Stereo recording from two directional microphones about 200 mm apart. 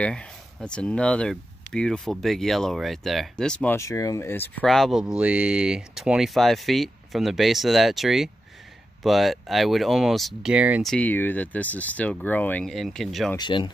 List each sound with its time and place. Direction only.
0.0 s speech: 5° left (ahead or behind)
10.9 s speech: 10° left (ahead or behind)
13.4 s speech: 25° left (ahead or behind)